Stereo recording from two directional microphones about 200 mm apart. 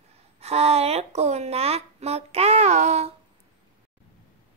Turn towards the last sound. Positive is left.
turn(degrees=-35)  # may be behind; listen again after turning